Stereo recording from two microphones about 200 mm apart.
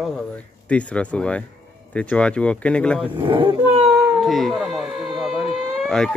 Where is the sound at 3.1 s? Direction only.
25° right (ahead or behind).